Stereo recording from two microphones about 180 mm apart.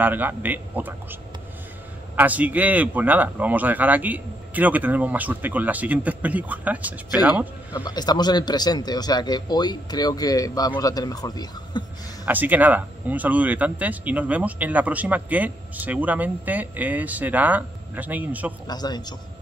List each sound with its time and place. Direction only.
0.0 s speech: 10° right (ahead or behind)
2.1 s speech: 10° right (ahead or behind)
7.7 s a man's voice: 25° left (ahead or behind)
12.3 s speech: 10° right (ahead or behind)
18.7 s a man's voice: 20° left (ahead or behind)